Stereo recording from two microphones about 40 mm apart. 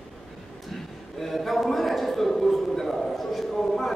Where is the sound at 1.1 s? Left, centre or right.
Centre.